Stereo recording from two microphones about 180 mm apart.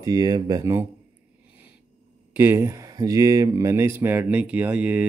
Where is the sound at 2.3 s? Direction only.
10° right (ahead or behind).